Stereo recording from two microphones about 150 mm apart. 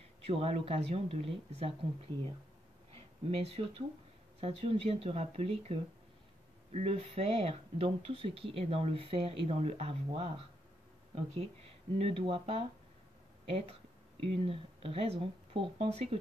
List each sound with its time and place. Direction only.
0.2 s speech: 40° right (ahead or behind)
2.9 s a sound: 45° right (ahead or behind)
4.4 s speech: 45° right (ahead or behind)